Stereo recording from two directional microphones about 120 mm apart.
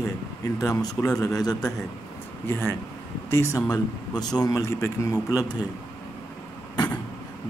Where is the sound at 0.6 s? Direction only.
30° left (ahead or behind).